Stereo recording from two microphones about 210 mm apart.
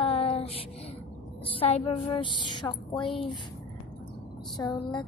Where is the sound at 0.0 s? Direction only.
30° left (ahead or behind).